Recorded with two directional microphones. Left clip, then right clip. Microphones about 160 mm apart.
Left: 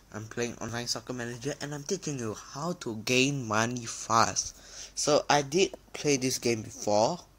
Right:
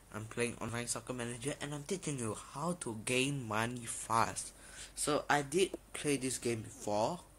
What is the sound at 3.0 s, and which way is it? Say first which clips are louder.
Speech: left 9 dB; 35° left (ahead or behind).